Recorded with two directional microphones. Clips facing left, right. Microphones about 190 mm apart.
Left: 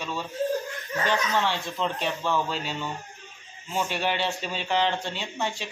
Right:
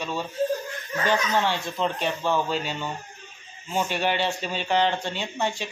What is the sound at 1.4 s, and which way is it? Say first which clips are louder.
Speech: right 2 dB; centre (ahead or behind).